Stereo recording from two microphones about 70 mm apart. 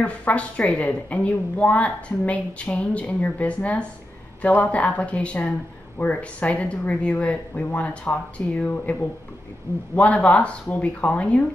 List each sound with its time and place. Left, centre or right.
0.0 s a woman's voice: centre